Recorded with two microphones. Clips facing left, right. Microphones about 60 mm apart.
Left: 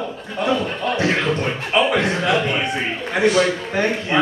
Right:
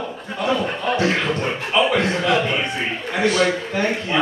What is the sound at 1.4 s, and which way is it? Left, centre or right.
A man's voice, left.